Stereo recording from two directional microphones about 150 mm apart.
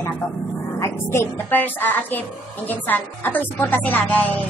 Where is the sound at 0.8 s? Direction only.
15° left (ahead or behind).